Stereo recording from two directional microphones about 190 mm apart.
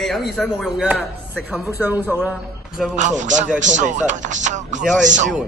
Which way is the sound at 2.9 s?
40° right (ahead or behind).